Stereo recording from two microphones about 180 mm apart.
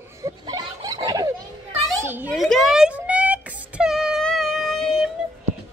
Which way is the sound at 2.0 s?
10° right (ahead or behind).